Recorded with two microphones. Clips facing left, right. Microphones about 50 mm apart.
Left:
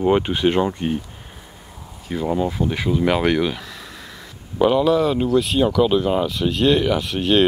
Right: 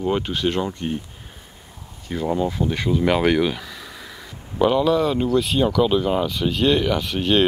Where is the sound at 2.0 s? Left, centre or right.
Centre.